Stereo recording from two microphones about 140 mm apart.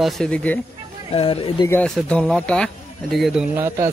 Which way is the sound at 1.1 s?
40° left (ahead or behind).